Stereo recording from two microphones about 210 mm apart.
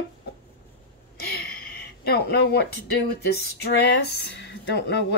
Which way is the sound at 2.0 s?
50° left (ahead or behind).